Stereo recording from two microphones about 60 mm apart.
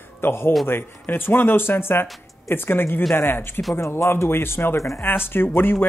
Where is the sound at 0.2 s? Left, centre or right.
Left.